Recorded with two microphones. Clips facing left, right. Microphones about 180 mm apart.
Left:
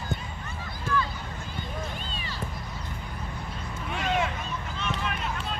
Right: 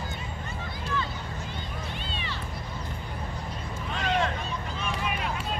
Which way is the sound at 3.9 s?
10° left (ahead or behind).